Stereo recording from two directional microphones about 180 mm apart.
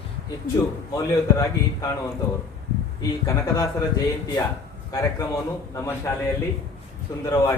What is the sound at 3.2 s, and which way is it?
Speech, 20° left (ahead or behind).